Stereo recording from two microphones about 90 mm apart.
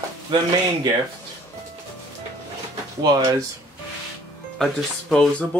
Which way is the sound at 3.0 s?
45° right (ahead or behind).